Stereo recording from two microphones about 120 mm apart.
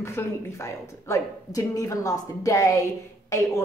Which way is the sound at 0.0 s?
20° left (ahead or behind).